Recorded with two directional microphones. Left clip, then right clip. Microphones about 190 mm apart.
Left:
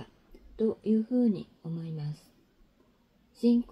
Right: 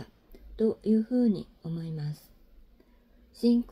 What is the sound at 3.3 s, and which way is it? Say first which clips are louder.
Speech: right 1 dB; centre (ahead or behind).